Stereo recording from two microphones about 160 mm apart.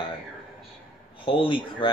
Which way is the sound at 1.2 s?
30° left (ahead or behind).